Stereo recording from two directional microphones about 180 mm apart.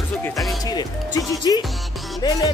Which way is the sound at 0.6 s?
20° left (ahead or behind).